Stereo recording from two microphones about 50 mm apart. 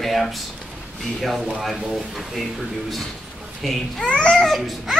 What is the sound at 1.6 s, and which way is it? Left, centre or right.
Speech, centre.